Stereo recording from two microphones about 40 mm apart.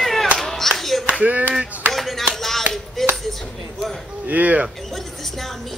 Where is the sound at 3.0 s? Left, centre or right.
Centre.